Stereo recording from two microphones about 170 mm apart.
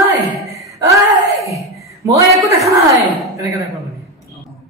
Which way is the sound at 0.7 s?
20° right (ahead or behind).